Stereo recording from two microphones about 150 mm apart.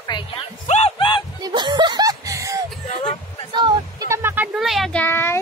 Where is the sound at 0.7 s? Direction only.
45° left (ahead or behind).